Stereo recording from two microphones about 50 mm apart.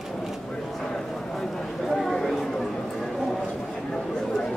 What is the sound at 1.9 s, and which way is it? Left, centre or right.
Chatter, centre.